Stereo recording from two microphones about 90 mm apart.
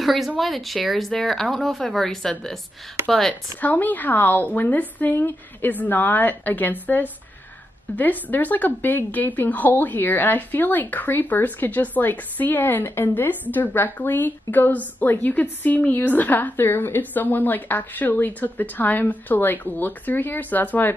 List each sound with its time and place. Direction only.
0.0 s speech: centre (ahead or behind)
3.6 s a woman's voice: 20° left (ahead or behind)